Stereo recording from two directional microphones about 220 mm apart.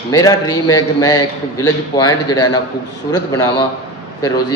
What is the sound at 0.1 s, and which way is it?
A man's voice, 15° left (ahead or behind).